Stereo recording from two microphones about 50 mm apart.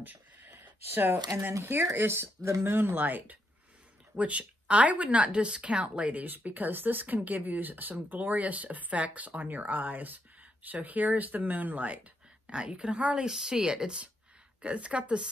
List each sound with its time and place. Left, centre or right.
0.0 s a sound: right
0.6 s a sound: right
1.4 s speech: right
4.2 s speech: right
12.4 s a woman's voice: centre
13.1 s a woman's voice: centre